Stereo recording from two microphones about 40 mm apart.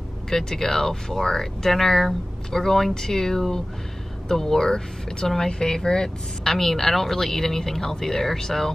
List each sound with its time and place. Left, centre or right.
0.3 s speech: centre